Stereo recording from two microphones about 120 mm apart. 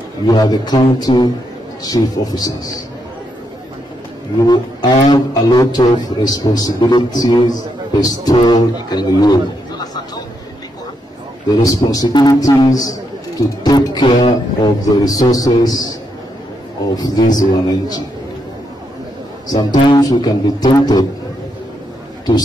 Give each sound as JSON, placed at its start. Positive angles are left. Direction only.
{"t": 0.3, "sound": "speech", "side_deg": 35}
{"t": 4.4, "sound": "speech", "side_deg": 35}
{"t": 11.4, "sound": "speech", "side_deg": 30}
{"t": 16.9, "sound": "speech", "side_deg": 35}
{"t": 19.5, "sound": "speech", "side_deg": 35}